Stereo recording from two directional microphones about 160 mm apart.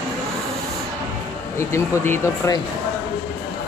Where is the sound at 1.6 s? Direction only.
15° left (ahead or behind).